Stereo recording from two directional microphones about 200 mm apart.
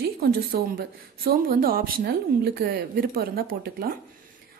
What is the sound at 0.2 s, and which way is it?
A woman's voice, 50° right (ahead or behind).